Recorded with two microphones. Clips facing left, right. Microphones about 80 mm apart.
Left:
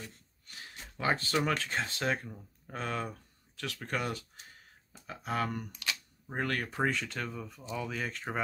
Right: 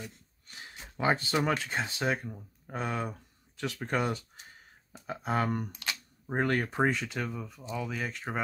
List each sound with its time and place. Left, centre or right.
0.9 s speech: centre